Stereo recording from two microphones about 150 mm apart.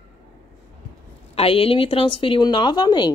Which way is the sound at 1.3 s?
40° left (ahead or behind).